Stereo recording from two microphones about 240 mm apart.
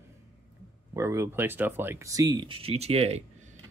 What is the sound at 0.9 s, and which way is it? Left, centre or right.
Speech, centre.